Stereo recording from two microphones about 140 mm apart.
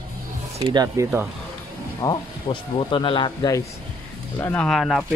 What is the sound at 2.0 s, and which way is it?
Speech, 30° left (ahead or behind).